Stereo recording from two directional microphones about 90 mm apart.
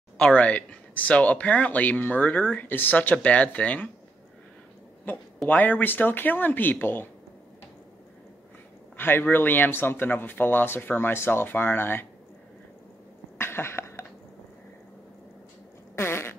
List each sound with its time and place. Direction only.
0.2 s speech: 15° left (ahead or behind)
5.1 s speech: 20° left (ahead or behind)
8.9 s speech: 25° left (ahead or behind)
13.4 s cough: 25° left (ahead or behind)
16.0 s fart: 25° left (ahead or behind)